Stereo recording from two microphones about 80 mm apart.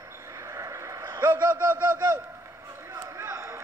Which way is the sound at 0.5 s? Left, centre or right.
Right.